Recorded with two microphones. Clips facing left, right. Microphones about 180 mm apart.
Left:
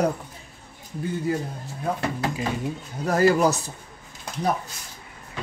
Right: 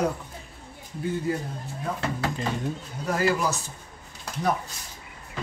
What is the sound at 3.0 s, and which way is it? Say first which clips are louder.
Speech: left 6 dB; 40° left (ahead or behind).